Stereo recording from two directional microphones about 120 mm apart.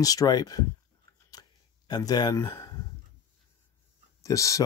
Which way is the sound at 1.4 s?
35° left (ahead or behind).